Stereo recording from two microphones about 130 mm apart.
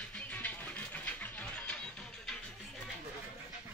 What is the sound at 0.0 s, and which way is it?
Music, 10° left (ahead or behind).